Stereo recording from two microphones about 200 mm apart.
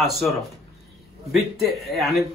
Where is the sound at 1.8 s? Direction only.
Centre (ahead or behind).